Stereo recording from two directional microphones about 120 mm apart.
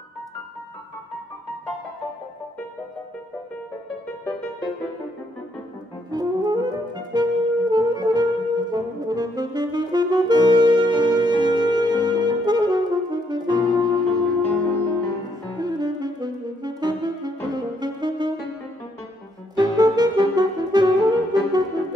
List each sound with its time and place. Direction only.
6.1 s saxophone: 35° right (ahead or behind)
15.6 s saxophone: 35° right (ahead or behind)
19.5 s saxophone: 35° right (ahead or behind)